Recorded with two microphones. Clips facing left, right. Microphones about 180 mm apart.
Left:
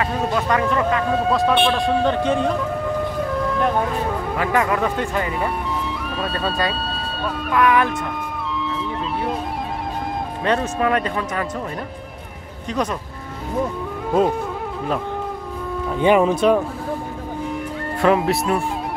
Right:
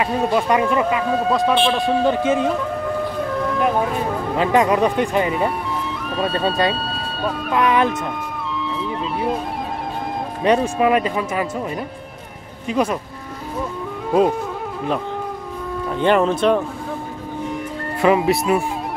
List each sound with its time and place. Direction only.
0.3 s speech: 15° right (ahead or behind)
4.4 s speech: 20° right (ahead or behind)
6.0 s music: centre (ahead or behind)
6.7 s speech: centre (ahead or behind)
7.5 s speech: 20° right (ahead or behind)
8.7 s music: centre (ahead or behind)
10.4 s speech: 15° right (ahead or behind)
12.6 s speech: 10° right (ahead or behind)
15.8 s speech: 5° left (ahead or behind)
18.0 s speech: centre (ahead or behind)